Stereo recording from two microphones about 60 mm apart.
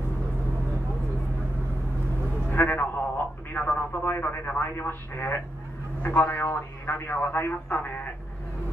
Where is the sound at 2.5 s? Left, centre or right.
Left.